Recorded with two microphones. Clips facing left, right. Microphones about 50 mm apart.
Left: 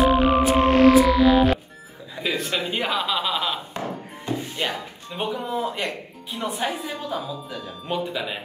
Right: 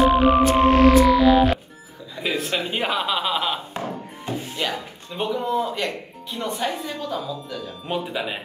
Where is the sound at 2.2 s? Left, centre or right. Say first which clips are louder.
Right 1 dB; centre.